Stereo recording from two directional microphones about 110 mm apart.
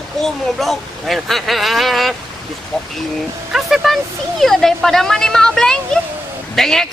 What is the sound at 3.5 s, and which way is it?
Speech, centre (ahead or behind).